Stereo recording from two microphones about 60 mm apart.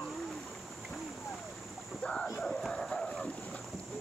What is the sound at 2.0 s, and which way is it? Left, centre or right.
Boat, centre.